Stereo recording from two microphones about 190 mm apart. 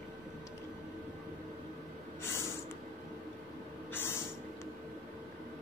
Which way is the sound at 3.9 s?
10° left (ahead or behind).